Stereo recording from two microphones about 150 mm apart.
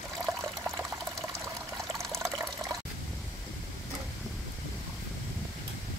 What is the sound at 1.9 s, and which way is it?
Water, 20° right (ahead or behind).